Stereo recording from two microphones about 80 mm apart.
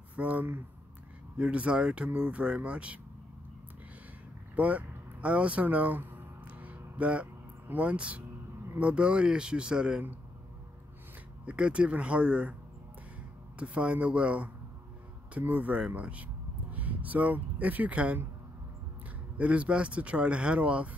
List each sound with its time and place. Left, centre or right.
0.1 s speech: centre
4.6 s vehicle: centre
8.7 s speech: centre
11.4 s speech: centre
13.6 s speech: centre
19.3 s speech: centre